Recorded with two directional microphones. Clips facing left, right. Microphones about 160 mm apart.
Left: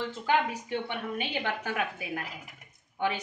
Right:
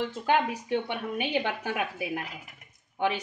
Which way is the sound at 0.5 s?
15° right (ahead or behind).